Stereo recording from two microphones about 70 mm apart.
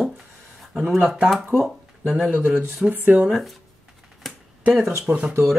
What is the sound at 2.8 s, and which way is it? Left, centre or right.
Speech, right.